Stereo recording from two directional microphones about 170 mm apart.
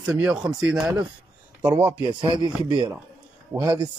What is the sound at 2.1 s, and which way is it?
Speech, 30° right (ahead or behind).